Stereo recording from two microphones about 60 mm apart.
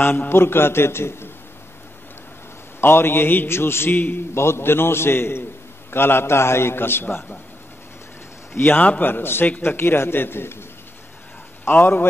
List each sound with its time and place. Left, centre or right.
0.0 s a man's voice: left
2.8 s a man's voice: left
4.3 s a man's voice: left
8.5 s a man's voice: left
11.6 s a man's voice: left